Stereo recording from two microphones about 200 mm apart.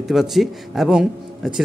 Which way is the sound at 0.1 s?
Centre (ahead or behind).